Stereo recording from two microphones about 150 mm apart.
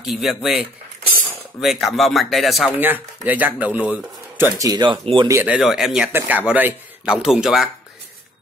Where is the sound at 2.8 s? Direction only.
10° right (ahead or behind); by 5.3 s 35° right (ahead or behind).